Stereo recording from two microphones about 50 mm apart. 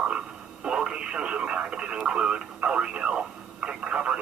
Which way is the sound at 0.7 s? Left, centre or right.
Centre.